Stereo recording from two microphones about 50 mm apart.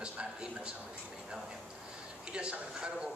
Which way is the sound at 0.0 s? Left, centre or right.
Centre.